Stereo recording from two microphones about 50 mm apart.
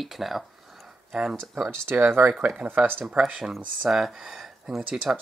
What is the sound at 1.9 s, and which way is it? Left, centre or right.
Speech, right.